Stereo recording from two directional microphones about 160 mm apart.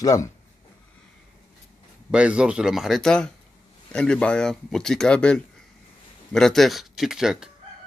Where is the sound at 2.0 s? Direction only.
5° right (ahead or behind).